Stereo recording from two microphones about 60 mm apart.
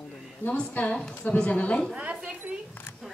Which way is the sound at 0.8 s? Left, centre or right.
Left.